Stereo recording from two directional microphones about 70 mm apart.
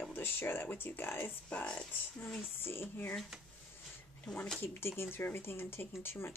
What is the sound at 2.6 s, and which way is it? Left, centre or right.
Speech, left.